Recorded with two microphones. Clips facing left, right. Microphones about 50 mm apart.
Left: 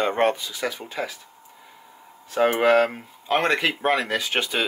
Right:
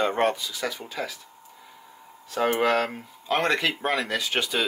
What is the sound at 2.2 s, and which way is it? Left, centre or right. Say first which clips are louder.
Speech: left 4 dB; left.